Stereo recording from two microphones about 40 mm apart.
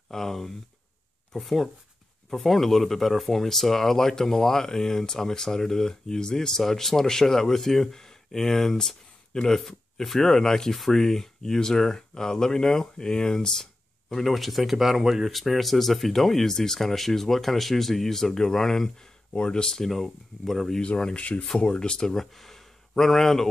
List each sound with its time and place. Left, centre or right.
0.1 s speech: centre
14.0 s speech: centre
19.3 s speech: left
19.8 s speech: centre
20.8 s speech: left
22.1 s speech: centre